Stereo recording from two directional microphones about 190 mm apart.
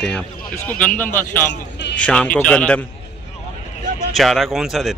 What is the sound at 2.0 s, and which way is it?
Speech, 5° left (ahead or behind).